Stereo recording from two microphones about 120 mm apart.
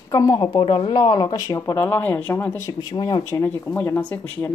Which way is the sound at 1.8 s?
15° left (ahead or behind).